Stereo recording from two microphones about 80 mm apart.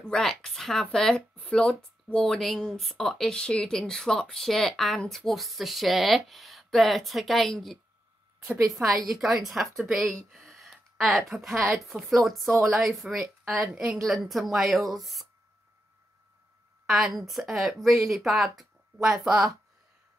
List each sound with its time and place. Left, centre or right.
0.0 s speech: centre
8.9 s speech: centre
10.3 s a sound: centre
11.7 s speech: centre
16.8 s speech: centre